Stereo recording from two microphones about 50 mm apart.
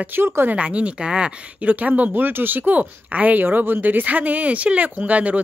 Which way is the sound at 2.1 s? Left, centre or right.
Right.